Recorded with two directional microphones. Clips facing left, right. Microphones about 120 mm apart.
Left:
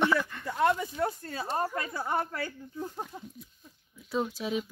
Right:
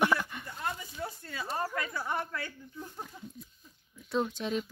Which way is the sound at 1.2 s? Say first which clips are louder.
Left 4 dB; 35° left (ahead or behind).